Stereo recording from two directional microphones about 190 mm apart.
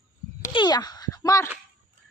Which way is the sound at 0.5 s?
20° left (ahead or behind).